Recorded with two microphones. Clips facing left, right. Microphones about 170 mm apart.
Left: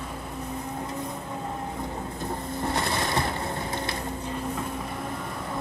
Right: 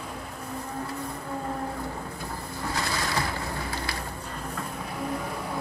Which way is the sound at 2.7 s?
25° left (ahead or behind).